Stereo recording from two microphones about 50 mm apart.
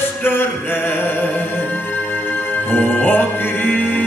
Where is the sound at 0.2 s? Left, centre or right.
Left.